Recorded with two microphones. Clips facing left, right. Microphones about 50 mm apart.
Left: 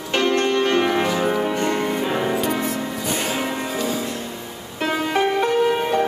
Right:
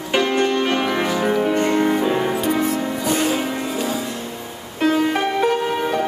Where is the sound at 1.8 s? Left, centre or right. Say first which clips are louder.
Right 5 dB; centre.